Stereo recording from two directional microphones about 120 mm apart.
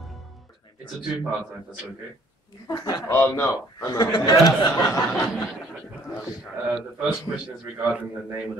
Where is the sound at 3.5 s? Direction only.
30° left (ahead or behind).